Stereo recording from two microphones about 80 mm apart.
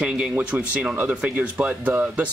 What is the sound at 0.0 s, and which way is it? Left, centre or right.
Speech, centre.